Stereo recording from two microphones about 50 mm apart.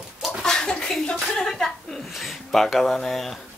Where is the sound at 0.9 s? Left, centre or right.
Centre.